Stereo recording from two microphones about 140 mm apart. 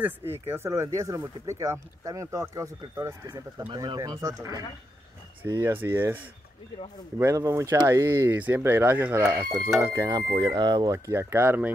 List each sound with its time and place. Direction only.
0.0 s speech: 15° right (ahead or behind)